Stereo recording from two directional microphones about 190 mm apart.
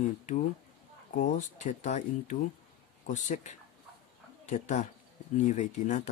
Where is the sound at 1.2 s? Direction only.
40° left (ahead or behind).